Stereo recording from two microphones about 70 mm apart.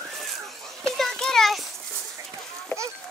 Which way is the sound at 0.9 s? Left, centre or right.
Centre.